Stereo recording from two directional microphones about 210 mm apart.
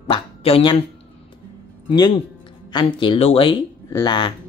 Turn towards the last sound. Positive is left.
turn(degrees=20)  # may be behind; listen again after turning